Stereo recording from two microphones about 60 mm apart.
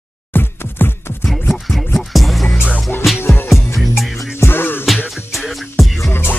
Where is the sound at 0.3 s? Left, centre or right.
Left.